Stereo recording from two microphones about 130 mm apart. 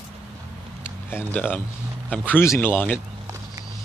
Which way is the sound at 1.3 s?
15° left (ahead or behind).